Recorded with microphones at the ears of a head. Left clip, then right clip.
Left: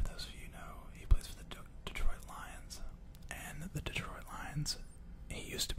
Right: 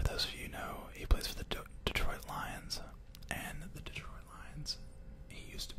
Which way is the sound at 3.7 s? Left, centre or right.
Left.